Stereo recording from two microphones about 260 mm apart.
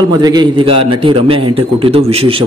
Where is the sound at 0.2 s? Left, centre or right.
Centre.